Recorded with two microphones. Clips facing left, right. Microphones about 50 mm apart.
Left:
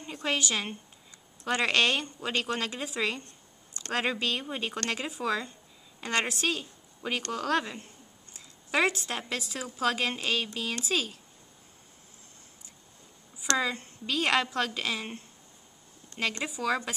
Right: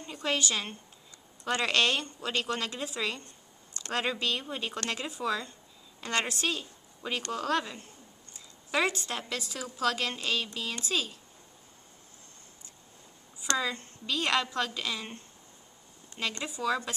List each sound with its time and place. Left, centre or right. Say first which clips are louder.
0.0 s a woman's voice: even; centre
6.6 s a sound: left 2 dB; centre
7.2 s a woman's voice: left 1 dB; centre
13.6 s a woman's voice: left 2 dB; centre